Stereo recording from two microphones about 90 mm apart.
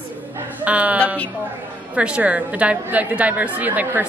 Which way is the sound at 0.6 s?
15° right (ahead or behind).